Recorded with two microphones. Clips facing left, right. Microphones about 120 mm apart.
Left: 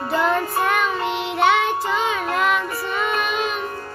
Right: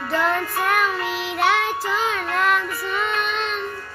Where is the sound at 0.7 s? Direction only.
Centre (ahead or behind).